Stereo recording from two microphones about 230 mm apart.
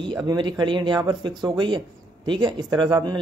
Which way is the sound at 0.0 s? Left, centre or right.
Centre.